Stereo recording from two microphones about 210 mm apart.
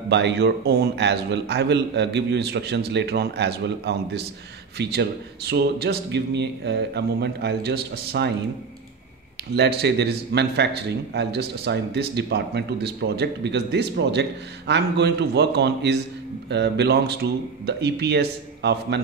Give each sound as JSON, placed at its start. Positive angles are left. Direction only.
{"t": 0.1, "sound": "a man's voice", "side_deg": -55}
{"t": 5.5, "sound": "a man's voice", "side_deg": -50}
{"t": 9.6, "sound": "a man's voice", "side_deg": -50}